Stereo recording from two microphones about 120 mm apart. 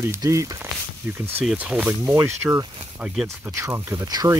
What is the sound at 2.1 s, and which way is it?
Speech, 25° right (ahead or behind).